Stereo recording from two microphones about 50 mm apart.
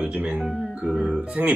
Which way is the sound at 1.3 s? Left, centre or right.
Right.